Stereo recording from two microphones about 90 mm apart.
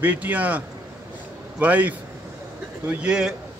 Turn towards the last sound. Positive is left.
turn(degrees=-10)  # may be behind; listen again after turning